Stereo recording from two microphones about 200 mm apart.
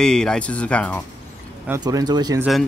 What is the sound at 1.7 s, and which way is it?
Speech, 20° right (ahead or behind).